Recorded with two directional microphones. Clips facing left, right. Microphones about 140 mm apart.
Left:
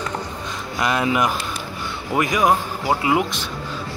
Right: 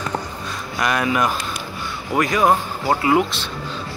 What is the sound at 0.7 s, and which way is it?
A man's voice, 20° left (ahead or behind).